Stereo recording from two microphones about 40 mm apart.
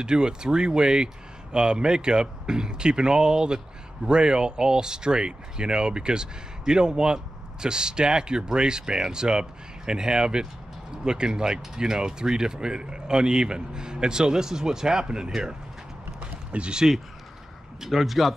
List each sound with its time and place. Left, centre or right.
0.0 s speech: centre
16.5 s speech: right
17.7 s speech: centre